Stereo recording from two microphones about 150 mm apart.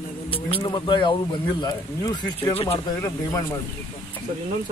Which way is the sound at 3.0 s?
15° left (ahead or behind).